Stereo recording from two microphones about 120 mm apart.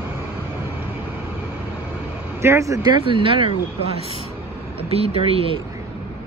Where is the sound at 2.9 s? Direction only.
45° right (ahead or behind).